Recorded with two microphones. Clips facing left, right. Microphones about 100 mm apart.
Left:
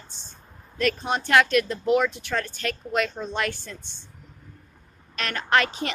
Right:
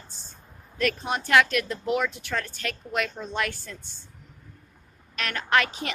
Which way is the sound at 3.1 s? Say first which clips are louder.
Left 3 dB; 25° left (ahead or behind).